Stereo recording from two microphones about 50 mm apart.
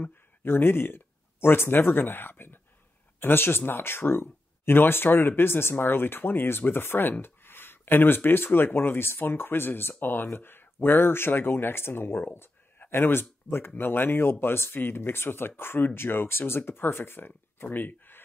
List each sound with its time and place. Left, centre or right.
0.0 s speech: left